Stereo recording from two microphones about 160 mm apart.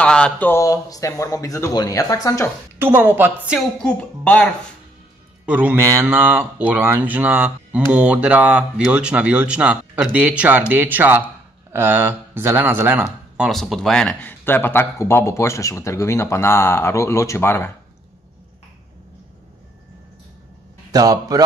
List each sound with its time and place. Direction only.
0.0 s speech: 5° left (ahead or behind)
2.8 s speech: 15° right (ahead or behind)
3.8 s speech: 5° left (ahead or behind)
5.4 s speech: 10° right (ahead or behind)
13.0 s speech: centre (ahead or behind); by 17.6 s 15° left (ahead or behind)
20.9 s a man's voice: 25° right (ahead or behind)